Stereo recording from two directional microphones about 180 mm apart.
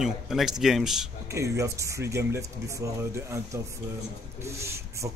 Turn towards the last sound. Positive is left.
turn(degrees=-15)  # may be behind; listen again after turning